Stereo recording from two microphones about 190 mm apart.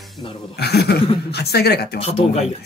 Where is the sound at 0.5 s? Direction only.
55° left (ahead or behind).